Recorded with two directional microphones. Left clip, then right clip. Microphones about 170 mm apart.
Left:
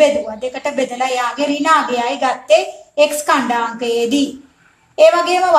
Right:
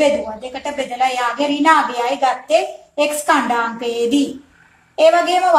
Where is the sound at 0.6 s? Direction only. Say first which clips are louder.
Even; 45° left (ahead or behind).